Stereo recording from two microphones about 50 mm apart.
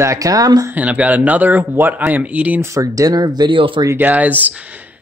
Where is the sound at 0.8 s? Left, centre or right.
Right.